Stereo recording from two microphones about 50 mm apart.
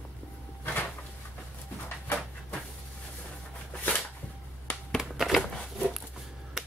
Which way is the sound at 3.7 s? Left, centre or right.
Left.